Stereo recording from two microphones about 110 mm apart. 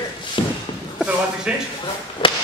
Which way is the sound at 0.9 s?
10° right (ahead or behind).